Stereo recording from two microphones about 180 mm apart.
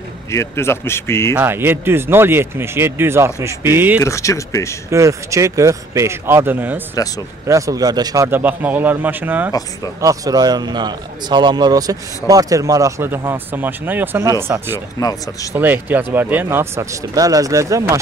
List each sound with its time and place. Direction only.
0.3 s a man's voice: 15° left (ahead or behind)
1.3 s speech: 10° right (ahead or behind)
4.0 s a man's voice: 15° left (ahead or behind)
4.9 s a man's voice: 15° right (ahead or behind)
15.0 s speech: 20° left (ahead or behind)
15.5 s speech: 10° right (ahead or behind)